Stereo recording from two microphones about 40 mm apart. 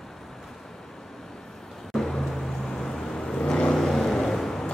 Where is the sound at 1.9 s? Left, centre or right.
Centre.